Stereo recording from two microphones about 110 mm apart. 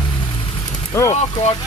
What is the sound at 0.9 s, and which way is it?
Speech, 25° left (ahead or behind).